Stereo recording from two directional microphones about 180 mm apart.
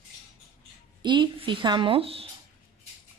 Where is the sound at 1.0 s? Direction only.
25° right (ahead or behind).